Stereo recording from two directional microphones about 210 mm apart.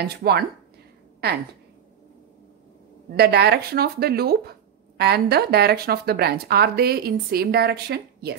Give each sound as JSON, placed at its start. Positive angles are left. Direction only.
{"t": 0.0, "sound": "speech", "side_deg": -50}
{"t": 3.1, "sound": "speech", "side_deg": -50}